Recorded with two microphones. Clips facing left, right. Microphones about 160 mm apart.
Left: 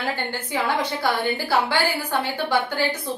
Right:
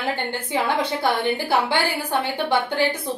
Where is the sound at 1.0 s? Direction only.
20° right (ahead or behind).